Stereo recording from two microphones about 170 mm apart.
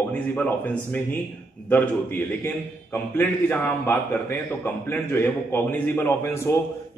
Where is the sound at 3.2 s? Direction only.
10° left (ahead or behind).